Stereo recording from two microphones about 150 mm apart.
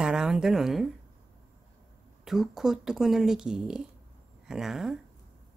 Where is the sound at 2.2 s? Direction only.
Centre (ahead or behind).